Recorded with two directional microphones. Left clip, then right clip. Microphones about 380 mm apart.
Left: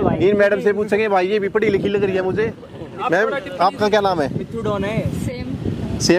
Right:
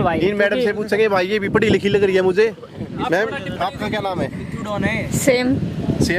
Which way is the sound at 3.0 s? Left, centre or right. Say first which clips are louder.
Left 2 dB; centre.